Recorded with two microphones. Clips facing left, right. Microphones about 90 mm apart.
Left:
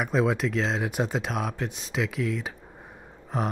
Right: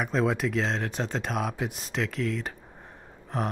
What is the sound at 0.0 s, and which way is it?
Speech, centre (ahead or behind).